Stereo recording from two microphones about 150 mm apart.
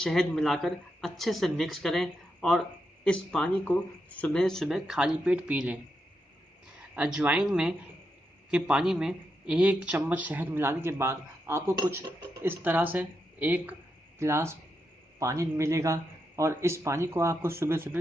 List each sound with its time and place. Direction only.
0.0 s speech: 5° left (ahead or behind)
7.0 s speech: 5° right (ahead or behind)